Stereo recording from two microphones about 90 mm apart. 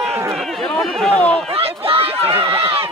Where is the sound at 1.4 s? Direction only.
90° right.